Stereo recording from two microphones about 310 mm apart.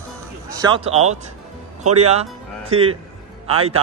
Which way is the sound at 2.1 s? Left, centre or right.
Centre.